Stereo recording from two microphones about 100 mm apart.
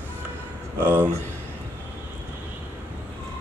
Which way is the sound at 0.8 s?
20° right (ahead or behind).